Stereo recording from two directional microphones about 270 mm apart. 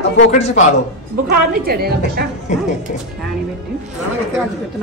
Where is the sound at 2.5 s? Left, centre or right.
Left.